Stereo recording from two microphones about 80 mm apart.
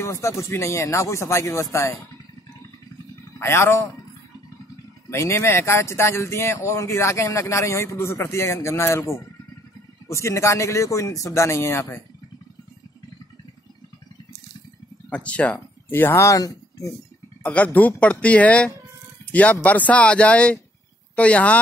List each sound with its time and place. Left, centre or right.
0.0 s speech: left
3.3 s speech: left
5.1 s speech: left
15.0 s speech: centre
15.9 s speech: left
17.4 s a sound: centre
18.0 s speech: centre